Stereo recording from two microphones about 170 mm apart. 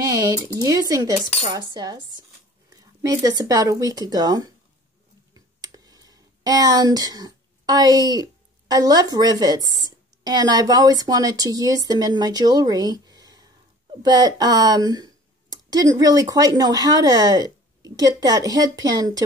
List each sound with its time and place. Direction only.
0.0 s speech: 20° right (ahead or behind)